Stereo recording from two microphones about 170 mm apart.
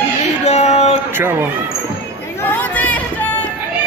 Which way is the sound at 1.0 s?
15° right (ahead or behind).